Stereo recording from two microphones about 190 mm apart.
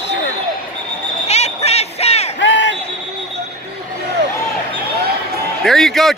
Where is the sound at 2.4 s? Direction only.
70° left (ahead or behind).